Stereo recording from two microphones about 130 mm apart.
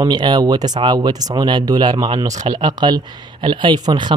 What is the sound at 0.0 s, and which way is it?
Speech, 35° right (ahead or behind).